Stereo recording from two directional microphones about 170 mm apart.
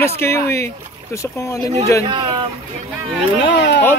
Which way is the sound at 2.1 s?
25° right (ahead or behind).